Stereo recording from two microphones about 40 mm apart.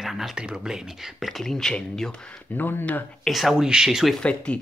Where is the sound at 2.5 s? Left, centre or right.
Left.